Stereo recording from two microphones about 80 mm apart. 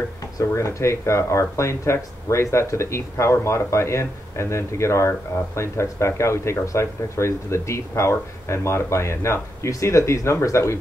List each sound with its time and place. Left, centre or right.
0.4 s speech: left